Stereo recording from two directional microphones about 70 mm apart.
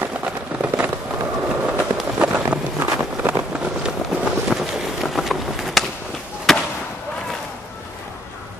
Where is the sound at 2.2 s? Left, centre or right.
Centre.